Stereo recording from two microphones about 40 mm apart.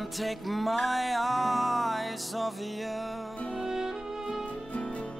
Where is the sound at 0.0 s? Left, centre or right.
Centre.